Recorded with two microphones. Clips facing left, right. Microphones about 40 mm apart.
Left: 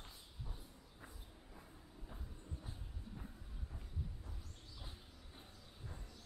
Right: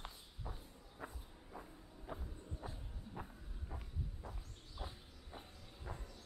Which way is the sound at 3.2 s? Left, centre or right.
Right.